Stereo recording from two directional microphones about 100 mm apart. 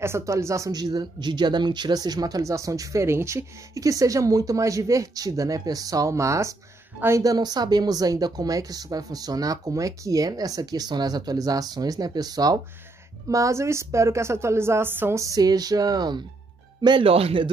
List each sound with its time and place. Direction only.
0.0 s a woman's voice: 30° right (ahead or behind)
0.7 s a woman's voice: 40° right (ahead or behind)
17.0 s speech: 70° right (ahead or behind)